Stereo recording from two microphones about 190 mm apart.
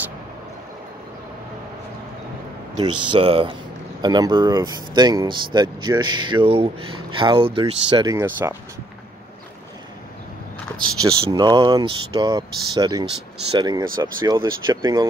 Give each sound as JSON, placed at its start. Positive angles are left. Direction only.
{"t": 2.8, "sound": "speech", "side_deg": -25}
{"t": 11.0, "sound": "speech", "side_deg": -25}